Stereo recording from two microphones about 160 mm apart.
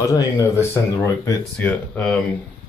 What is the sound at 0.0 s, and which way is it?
Speech, 20° left (ahead or behind).